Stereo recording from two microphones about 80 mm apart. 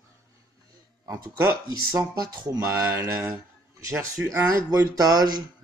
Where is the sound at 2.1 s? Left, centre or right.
Right.